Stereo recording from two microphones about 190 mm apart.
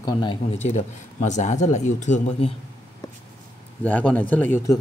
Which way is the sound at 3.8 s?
10° left (ahead or behind).